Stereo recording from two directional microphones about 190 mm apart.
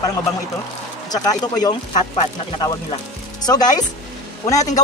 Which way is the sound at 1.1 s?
20° left (ahead or behind).